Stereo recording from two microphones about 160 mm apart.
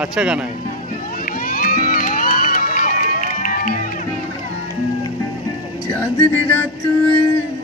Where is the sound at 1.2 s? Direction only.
65° left (ahead or behind).